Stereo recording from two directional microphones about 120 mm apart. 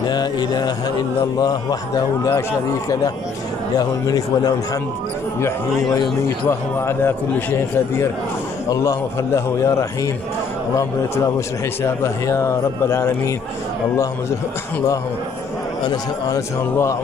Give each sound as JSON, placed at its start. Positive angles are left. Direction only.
{"t": 0.1, "sound": "a man's voice", "side_deg": 35}
{"t": 6.9, "sound": "speech", "side_deg": 20}
{"t": 11.3, "sound": "speech", "side_deg": 25}
{"t": 16.3, "sound": "speech", "side_deg": 25}